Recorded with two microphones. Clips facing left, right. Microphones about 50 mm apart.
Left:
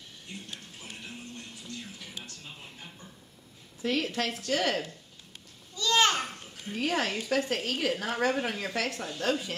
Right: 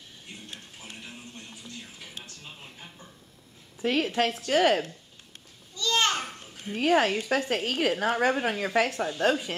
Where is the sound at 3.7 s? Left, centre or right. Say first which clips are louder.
Right 4 dB; right.